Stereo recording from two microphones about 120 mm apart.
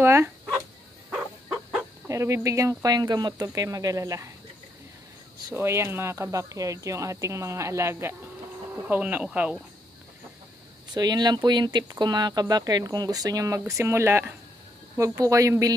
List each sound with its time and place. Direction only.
0.0 s dog: 20° right (ahead or behind)
1.1 s bow-wow: 5° right (ahead or behind)
2.0 s speech: 25° right (ahead or behind)
5.5 s speech: 20° right (ahead or behind)
10.9 s speech: 35° right (ahead or behind)